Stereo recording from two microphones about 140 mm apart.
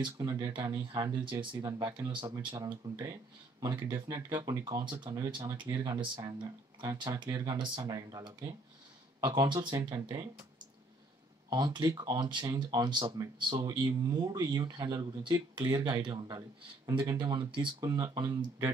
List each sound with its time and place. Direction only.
0.0 s speech: 30° right (ahead or behind)
11.5 s speech: 30° right (ahead or behind)